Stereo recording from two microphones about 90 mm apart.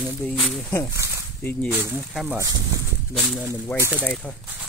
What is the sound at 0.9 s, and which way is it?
Speech, 35° right (ahead or behind).